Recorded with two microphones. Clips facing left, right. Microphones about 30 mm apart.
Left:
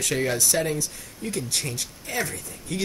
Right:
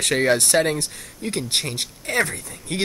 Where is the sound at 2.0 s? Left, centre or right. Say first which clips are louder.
Right 7 dB; right.